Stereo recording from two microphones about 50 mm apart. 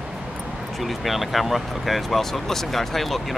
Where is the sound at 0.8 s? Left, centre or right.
Centre.